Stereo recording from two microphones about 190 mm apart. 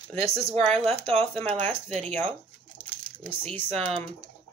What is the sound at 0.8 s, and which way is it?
Speech, 30° right (ahead or behind).